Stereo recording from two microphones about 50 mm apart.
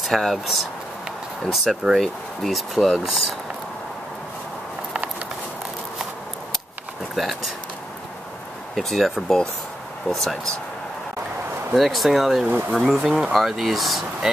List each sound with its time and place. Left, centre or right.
0.0 s speech: centre
1.5 s speech: centre
7.2 s speech: centre
8.7 s speech: centre
11.7 s speech: centre
12.4 s speech: right
12.7 s speech: centre